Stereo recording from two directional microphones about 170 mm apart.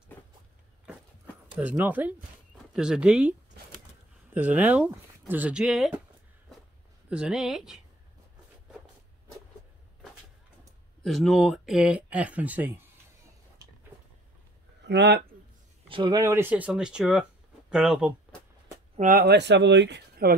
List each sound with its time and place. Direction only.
1.6 s speech: 10° right (ahead or behind)
7.1 s speech: 5° right (ahead or behind)
11.1 s speech: centre (ahead or behind)
14.9 s speech: 85° right
15.9 s speech: 25° right (ahead or behind); by 18.1 s 5° right (ahead or behind)
18.9 s speech: 50° right (ahead or behind)
19.2 s speech: 85° right